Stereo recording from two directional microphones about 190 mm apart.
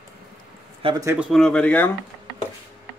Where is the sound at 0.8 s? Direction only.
25° right (ahead or behind).